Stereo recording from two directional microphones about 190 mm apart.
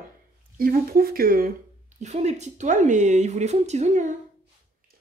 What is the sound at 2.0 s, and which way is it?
Speech, 35° right (ahead or behind).